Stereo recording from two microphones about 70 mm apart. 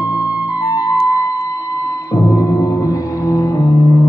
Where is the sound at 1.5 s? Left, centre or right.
Left.